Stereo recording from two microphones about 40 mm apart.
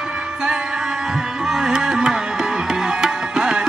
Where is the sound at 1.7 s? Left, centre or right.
Centre.